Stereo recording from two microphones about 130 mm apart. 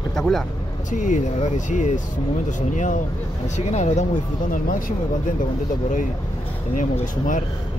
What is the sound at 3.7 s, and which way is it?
Speech, 60° left (ahead or behind).